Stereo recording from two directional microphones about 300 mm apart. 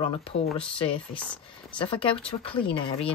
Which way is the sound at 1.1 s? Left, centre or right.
Centre.